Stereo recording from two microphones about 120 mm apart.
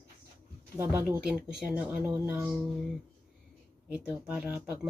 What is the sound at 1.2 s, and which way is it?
Speech, 5° right (ahead or behind).